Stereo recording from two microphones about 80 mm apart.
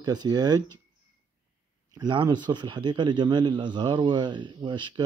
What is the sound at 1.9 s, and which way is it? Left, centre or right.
Speech, right.